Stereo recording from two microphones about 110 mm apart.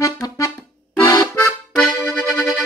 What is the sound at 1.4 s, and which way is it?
Accordion, 20° left (ahead or behind).